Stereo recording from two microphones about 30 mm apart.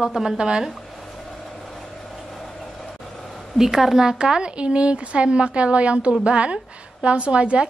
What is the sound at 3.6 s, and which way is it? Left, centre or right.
Speech, centre.